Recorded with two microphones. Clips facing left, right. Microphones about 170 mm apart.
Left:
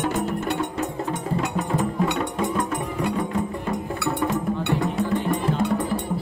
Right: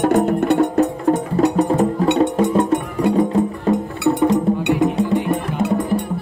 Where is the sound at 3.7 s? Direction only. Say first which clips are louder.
Right 9 dB; 20° right (ahead or behind).